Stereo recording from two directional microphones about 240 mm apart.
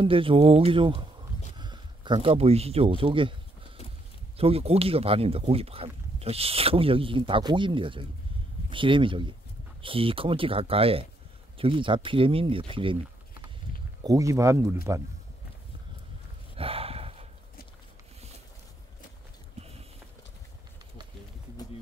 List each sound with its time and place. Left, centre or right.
0.0 s speech: right
4.4 s speech: right
14.0 s speech: centre
16.5 s a sound: right